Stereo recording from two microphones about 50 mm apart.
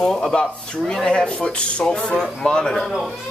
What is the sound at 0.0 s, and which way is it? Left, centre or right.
Speech, centre.